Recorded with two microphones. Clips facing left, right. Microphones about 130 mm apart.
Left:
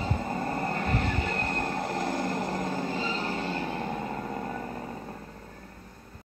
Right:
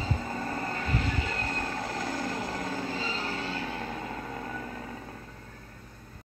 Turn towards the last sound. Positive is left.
turn(degrees=30)  # may be behind; listen again after turning